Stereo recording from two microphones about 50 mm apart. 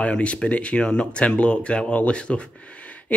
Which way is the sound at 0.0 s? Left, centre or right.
Left.